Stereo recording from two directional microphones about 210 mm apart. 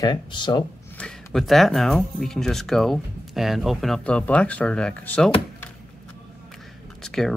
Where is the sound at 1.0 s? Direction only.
5° left (ahead or behind).